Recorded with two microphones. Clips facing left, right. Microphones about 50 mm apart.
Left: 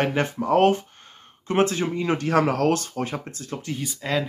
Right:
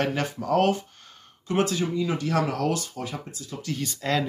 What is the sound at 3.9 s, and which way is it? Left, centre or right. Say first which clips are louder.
Speech: even; centre.